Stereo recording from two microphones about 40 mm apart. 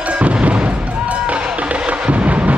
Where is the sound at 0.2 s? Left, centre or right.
Right.